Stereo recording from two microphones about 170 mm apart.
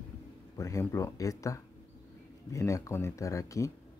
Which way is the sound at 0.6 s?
20° left (ahead or behind).